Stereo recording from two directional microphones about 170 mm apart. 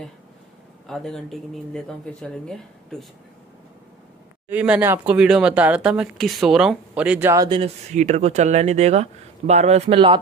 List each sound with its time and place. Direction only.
0.8 s speech: centre (ahead or behind)
4.5 s speech: 10° right (ahead or behind)
7.4 s speech: 30° right (ahead or behind)
7.9 s speech: 45° right (ahead or behind)